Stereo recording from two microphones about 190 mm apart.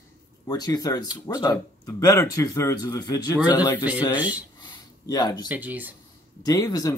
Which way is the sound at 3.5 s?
20° left (ahead or behind).